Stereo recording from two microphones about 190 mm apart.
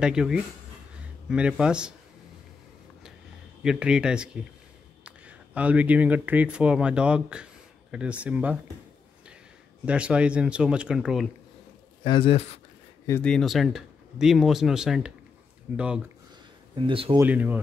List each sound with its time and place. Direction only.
0.0 s speech: 5° right (ahead or behind)
3.6 s speech: 5° right (ahead or behind)
9.8 s speech: 5° right (ahead or behind)
12.0 s speech: 30° left (ahead or behind)
13.0 s speech: 10° left (ahead or behind)
16.7 s speech: 30° right (ahead or behind)
17.2 s speech: 10° right (ahead or behind)